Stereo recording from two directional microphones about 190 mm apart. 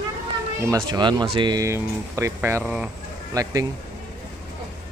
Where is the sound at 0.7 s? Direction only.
20° right (ahead or behind).